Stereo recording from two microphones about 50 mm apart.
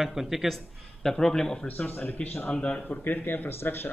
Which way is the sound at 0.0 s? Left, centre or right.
Centre.